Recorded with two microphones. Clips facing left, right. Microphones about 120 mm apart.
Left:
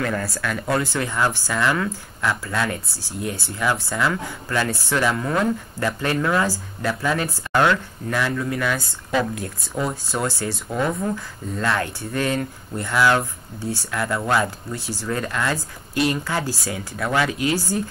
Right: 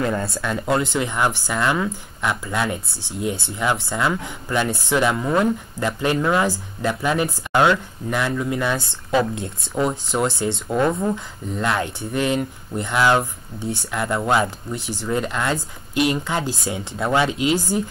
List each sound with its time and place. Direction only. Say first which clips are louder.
0.0 s speech: right 2 dB; 25° right (ahead or behind)